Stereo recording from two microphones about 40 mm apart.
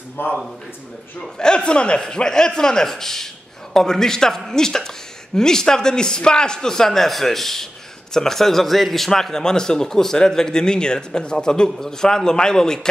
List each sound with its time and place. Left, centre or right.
0.2 s a man's voice: left
1.2 s a man's voice: left